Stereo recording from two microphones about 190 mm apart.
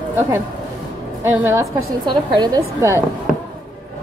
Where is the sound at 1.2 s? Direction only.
10° right (ahead or behind).